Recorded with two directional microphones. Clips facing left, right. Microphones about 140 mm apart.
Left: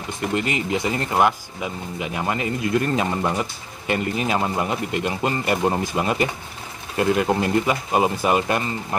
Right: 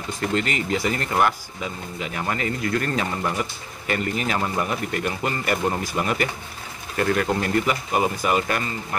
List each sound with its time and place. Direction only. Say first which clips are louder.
0.2 s speech: left 1 dB; 15° left (ahead or behind)